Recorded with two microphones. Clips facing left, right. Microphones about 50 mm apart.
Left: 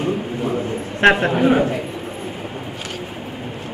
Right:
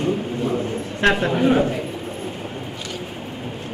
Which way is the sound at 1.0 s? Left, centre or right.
Left.